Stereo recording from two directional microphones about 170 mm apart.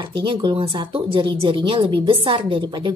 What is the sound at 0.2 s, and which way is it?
A woman's voice, 25° right (ahead or behind).